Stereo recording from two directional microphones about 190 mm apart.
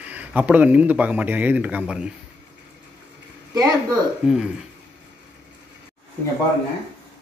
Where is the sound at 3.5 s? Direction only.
20° right (ahead or behind).